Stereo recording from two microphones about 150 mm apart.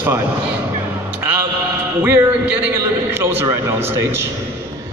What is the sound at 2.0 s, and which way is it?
A man's voice, 15° right (ahead or behind).